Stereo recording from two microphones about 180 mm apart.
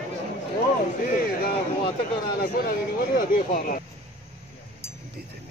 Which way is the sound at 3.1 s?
50° left (ahead or behind).